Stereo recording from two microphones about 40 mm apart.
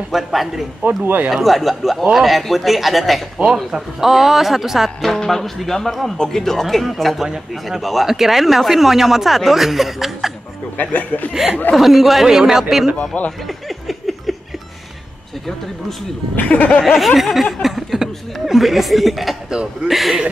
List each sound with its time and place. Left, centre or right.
0.1 s a man's voice: centre
5.0 s a man's voice: centre
10.8 s speech: left
11.7 s speech: centre
13.1 s speech: left
13.5 s a sound: centre
16.3 s speech: left
16.8 s speech: centre
17.6 s chuckle: centre
18.6 s speech: centre
19.5 s a man's voice: right
19.9 s speech: centre